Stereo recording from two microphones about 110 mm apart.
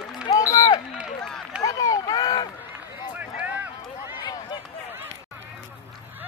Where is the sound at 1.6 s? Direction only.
30° left (ahead or behind).